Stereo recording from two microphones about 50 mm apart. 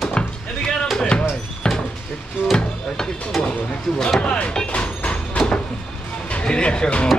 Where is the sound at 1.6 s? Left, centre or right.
Centre.